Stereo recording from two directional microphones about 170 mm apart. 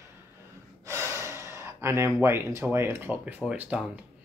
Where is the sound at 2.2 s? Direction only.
15° right (ahead or behind).